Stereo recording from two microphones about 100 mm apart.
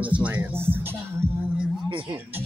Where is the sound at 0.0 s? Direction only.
15° right (ahead or behind).